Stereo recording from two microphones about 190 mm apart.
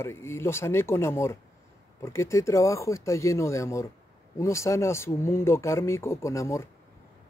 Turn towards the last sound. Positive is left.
turn(degrees=15)  # may be behind; listen again after turning